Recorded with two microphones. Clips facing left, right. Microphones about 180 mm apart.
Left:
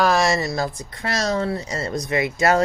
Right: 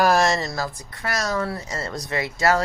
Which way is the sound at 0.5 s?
20° left (ahead or behind).